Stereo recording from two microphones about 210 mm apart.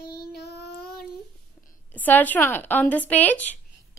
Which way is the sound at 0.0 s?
45° left (ahead or behind).